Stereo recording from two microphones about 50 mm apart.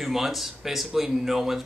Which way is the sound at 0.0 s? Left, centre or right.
Centre.